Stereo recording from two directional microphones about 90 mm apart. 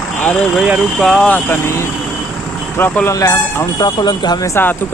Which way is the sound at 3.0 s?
35° left (ahead or behind).